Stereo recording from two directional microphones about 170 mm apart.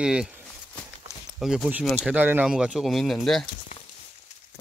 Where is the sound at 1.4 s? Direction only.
5° right (ahead or behind).